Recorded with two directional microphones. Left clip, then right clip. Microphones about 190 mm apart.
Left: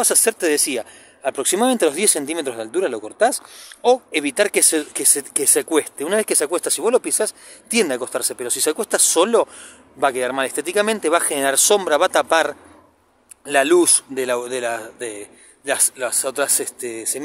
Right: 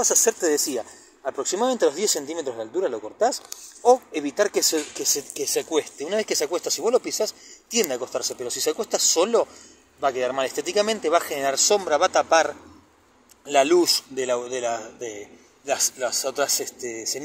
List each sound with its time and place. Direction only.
0.0 s speech: 40° left (ahead or behind)